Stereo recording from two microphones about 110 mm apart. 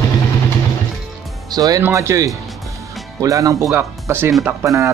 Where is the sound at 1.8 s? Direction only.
25° right (ahead or behind).